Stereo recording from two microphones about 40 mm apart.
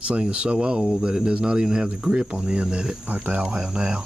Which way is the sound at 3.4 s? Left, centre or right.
Right.